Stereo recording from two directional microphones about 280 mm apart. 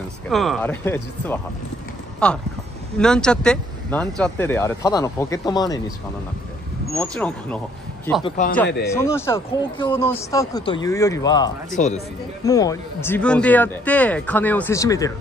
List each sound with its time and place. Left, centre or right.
0.3 s speech: centre
7.0 s speech: centre
8.2 s speech: left
8.8 s speech: centre
11.7 s speech: left
12.4 s speech: centre